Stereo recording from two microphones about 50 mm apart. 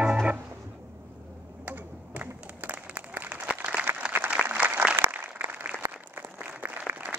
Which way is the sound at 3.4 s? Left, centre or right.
Right.